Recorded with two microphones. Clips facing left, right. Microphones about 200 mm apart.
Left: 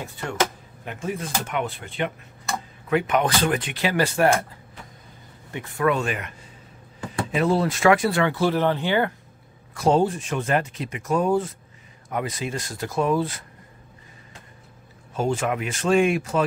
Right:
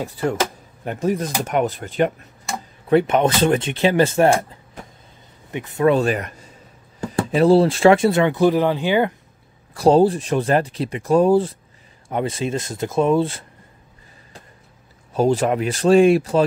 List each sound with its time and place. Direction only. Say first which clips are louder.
0.0 s speech: right 5 dB; 35° right (ahead or behind)
2.9 s speech: right 6 dB; 30° right (ahead or behind)
5.5 s speech: right 6 dB; 20° right (ahead or behind)
9.8 s speech: right 6 dB; 35° right (ahead or behind)
15.1 s speech: right 6 dB; 35° right (ahead or behind)